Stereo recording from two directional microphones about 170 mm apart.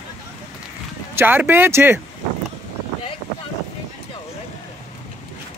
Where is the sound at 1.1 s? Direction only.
10° right (ahead or behind).